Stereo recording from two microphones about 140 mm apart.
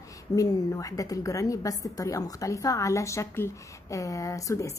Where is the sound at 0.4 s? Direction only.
25° left (ahead or behind).